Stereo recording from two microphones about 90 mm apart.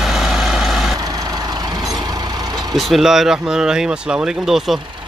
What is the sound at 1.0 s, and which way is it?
Vehicle, 45° right (ahead or behind).